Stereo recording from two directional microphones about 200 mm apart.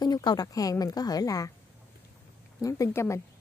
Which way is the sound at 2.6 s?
15° left (ahead or behind).